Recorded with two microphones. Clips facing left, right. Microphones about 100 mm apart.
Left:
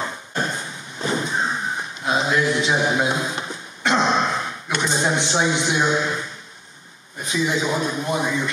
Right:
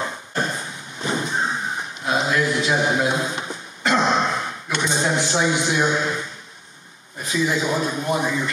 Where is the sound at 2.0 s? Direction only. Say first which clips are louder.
Left 1 dB; 25° left (ahead or behind).